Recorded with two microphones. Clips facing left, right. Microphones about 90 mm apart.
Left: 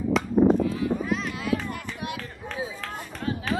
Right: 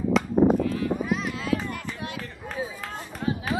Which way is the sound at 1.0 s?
5° right (ahead or behind).